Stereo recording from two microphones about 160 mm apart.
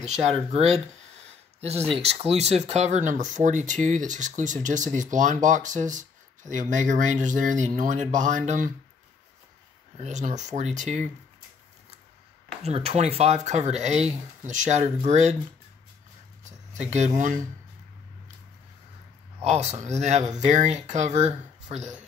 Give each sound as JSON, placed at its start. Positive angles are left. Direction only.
{"t": 0.0, "sound": "speech", "side_deg": -45}
{"t": 9.9, "sound": "speech", "side_deg": -45}
{"t": 12.6, "sound": "speech", "side_deg": -40}
{"t": 19.4, "sound": "speech", "side_deg": -45}